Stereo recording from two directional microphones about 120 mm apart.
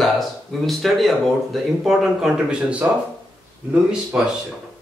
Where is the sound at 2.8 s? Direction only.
20° right (ahead or behind).